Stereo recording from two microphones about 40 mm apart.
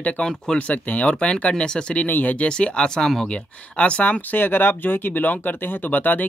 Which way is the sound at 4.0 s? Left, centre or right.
Left.